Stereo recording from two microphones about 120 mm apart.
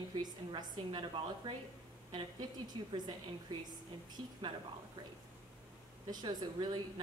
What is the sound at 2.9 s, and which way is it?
Speech, 35° right (ahead or behind).